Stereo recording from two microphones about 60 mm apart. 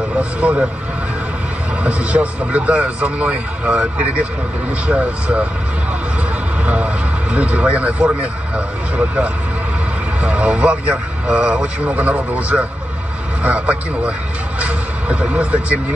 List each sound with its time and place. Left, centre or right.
0.2 s a man's voice: right
1.8 s a man's voice: right
4.8 s a man's voice: right
6.6 s a man's voice: right
14.6 s vehicle: right